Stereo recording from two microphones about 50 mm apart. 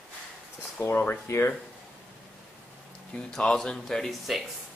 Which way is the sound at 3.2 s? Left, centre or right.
Centre.